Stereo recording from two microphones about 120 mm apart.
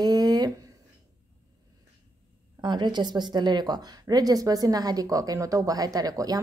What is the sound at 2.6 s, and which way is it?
Speech, 40° right (ahead or behind).